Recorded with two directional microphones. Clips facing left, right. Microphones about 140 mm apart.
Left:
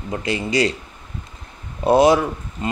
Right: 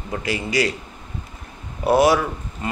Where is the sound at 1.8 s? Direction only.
20° left (ahead or behind).